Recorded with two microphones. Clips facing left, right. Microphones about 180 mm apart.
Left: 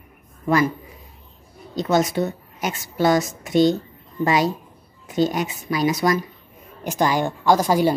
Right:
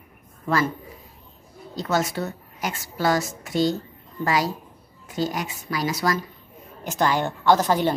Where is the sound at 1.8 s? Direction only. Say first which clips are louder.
Left 5 dB; 20° left (ahead or behind).